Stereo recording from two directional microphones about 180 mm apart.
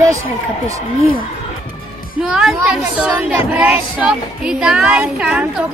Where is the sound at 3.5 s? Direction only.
5° right (ahead or behind).